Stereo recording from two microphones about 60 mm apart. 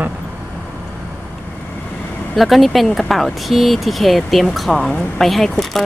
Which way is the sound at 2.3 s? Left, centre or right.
Centre.